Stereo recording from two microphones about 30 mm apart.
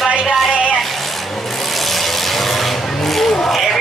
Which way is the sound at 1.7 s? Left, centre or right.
Centre.